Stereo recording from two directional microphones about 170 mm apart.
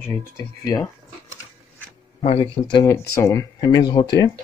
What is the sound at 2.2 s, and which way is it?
Speech, 35° left (ahead or behind).